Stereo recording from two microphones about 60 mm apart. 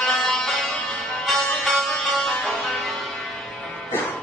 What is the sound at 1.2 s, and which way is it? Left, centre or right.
Sitar, centre.